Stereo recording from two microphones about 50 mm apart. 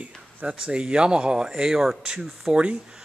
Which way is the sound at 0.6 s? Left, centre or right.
Centre.